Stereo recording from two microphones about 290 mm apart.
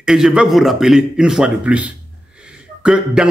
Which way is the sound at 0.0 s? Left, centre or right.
Centre.